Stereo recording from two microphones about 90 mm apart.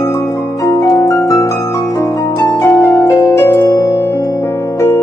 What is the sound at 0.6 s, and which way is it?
Music, 40° left (ahead or behind).